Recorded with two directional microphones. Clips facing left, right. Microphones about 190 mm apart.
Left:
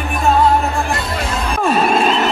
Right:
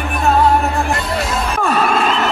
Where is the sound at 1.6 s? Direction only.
25° left (ahead or behind).